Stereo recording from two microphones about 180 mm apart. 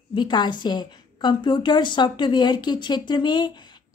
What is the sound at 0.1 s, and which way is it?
A woman's voice, 25° left (ahead or behind).